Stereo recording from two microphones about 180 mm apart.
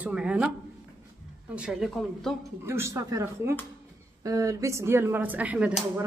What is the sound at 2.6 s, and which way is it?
Speech, 15° right (ahead or behind).